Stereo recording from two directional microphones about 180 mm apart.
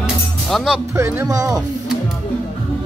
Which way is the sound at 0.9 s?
15° right (ahead or behind).